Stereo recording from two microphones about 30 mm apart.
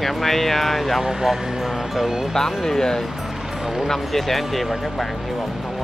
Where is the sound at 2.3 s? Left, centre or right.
Centre.